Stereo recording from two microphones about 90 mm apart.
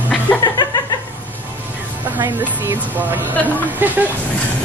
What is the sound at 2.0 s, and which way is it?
A woman's voice, 20° right (ahead or behind).